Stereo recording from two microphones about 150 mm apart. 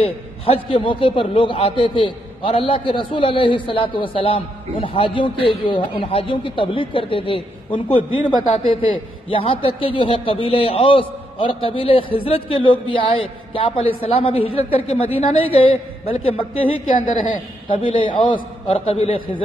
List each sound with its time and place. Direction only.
0.0 s a man's voice: 40° left (ahead or behind)